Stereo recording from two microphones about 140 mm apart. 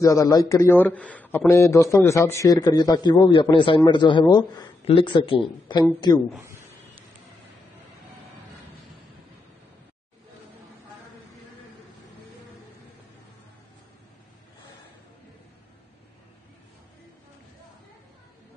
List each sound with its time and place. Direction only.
0.0 s a man's voice: 25° left (ahead or behind)